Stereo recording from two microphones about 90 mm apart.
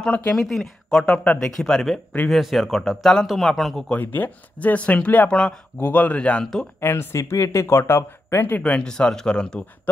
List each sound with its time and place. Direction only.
0.0 s speech: 15° left (ahead or behind)
1.6 s a man's voice: 5° left (ahead or behind)
3.9 s speech: 20° left (ahead or behind)
6.8 s speech: 30° left (ahead or behind); by 9.7 s 10° left (ahead or behind)